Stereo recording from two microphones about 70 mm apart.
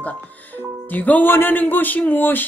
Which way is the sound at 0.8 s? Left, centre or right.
Left.